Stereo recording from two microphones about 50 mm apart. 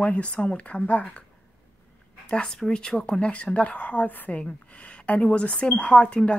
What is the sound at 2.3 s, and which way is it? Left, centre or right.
Speech, centre.